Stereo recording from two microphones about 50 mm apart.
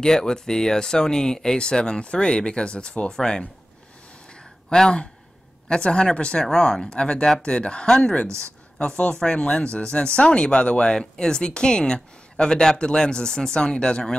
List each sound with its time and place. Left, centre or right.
0.0 s speech: centre
4.3 s a sound: centre
5.7 s a woman's voice: centre